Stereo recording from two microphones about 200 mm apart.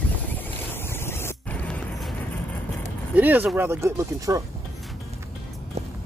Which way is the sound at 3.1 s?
10° right (ahead or behind).